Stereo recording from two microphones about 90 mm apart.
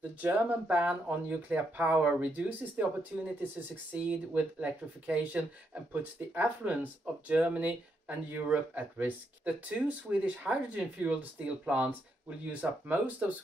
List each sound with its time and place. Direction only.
0.0 s speech: 15° right (ahead or behind)